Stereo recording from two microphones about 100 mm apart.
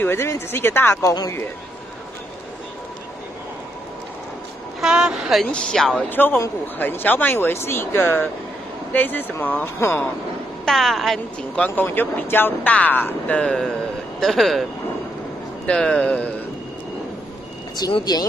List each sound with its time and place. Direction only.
0.0 s speech: 25° left (ahead or behind)
4.7 s a woman's voice: 5° right (ahead or behind)
6.0 s speech: 20° left (ahead or behind)
10.6 s a woman's voice: 5° left (ahead or behind)
11.6 s a woman's voice: 20° left (ahead or behind)
17.8 s speech: 35° left (ahead or behind)